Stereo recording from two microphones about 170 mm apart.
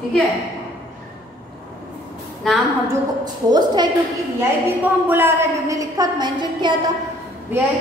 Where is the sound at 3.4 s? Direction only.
25° right (ahead or behind).